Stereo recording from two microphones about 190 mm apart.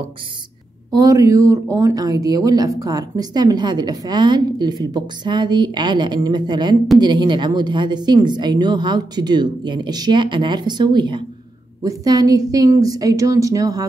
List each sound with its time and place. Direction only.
0.9 s a woman's voice: 15° right (ahead or behind)